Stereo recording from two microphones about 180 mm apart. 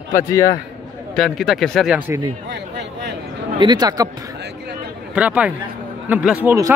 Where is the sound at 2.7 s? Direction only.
70° right (ahead or behind).